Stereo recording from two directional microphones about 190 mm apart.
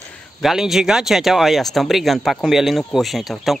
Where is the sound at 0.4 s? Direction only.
Centre (ahead or behind).